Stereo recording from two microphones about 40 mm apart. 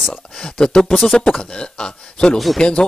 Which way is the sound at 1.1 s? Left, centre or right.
Centre.